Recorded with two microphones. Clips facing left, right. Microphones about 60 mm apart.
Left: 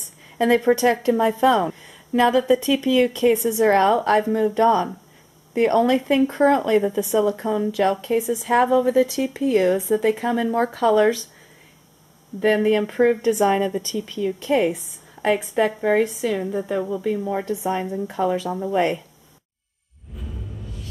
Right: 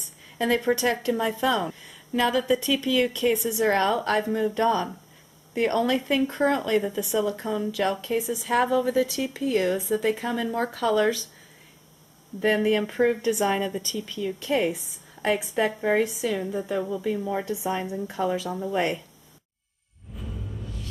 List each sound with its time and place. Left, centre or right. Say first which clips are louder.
0.4 s speech: left 6 dB; centre
3.4 s a woman's voice: left 7 dB; centre
12.4 s a woman's voice: left 4 dB; centre
15.8 s a woman's voice: left 4 dB; centre